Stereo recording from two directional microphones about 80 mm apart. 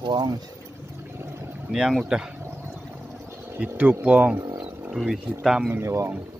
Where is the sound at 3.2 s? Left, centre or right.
Right.